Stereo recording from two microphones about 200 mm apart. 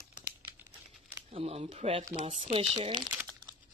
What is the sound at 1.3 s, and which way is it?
Speech, 30° right (ahead or behind).